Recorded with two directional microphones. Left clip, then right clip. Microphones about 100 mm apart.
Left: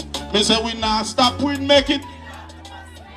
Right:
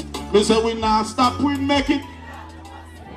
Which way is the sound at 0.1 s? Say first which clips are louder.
Right 1 dB; 20° left (ahead or behind).